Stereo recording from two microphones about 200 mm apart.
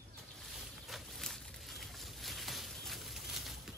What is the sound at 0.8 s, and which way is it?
Boat, centre (ahead or behind).